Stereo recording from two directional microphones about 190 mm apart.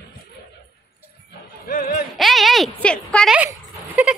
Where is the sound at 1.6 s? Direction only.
45° left (ahead or behind).